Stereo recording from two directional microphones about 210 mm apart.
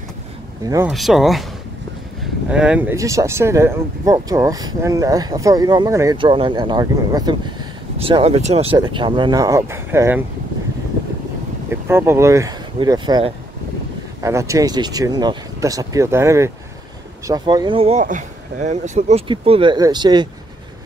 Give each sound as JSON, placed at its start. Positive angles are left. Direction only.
{"t": 0.7, "sound": "speech", "side_deg": -10}
{"t": 0.9, "sound": "speech", "side_deg": 0}
{"t": 2.5, "sound": "speech", "side_deg": -5}
{"t": 11.7, "sound": "speech", "side_deg": -10}